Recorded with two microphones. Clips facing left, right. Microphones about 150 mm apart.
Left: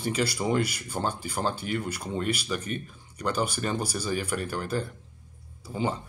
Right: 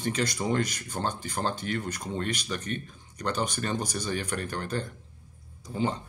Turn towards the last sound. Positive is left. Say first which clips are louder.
# even
turn(degrees=5)  # may be behind; listen again after turning